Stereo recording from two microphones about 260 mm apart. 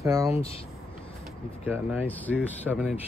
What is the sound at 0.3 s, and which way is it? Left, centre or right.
Speech, left.